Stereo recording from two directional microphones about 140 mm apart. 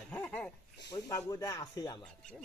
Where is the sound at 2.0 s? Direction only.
5° left (ahead or behind).